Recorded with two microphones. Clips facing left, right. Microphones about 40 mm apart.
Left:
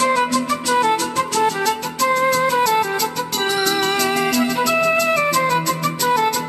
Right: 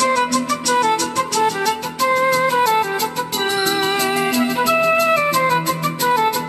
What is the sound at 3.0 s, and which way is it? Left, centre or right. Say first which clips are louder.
Music: even; centre.